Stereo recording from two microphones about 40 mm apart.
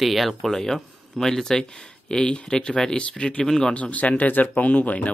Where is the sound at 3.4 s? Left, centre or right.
Centre.